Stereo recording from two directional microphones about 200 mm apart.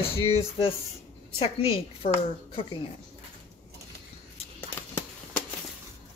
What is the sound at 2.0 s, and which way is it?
Speech, 40° left (ahead or behind).